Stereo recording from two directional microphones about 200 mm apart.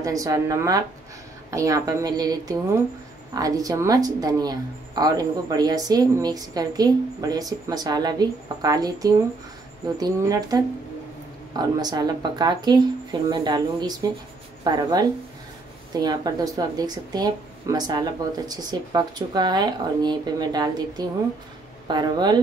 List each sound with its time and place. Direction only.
0.0 s a woman's voice: 15° right (ahead or behind)